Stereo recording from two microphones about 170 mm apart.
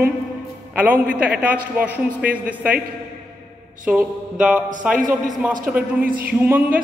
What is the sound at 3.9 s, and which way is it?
A man's voice, 5° right (ahead or behind).